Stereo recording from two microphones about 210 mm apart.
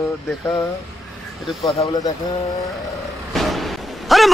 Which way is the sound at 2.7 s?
Centre (ahead or behind).